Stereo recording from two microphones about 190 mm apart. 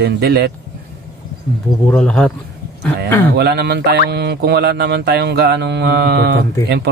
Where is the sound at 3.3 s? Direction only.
60° right (ahead or behind).